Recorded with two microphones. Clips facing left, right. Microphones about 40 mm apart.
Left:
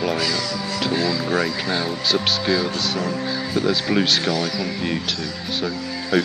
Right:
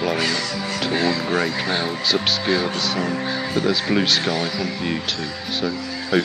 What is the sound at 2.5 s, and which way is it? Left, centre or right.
Speech, right.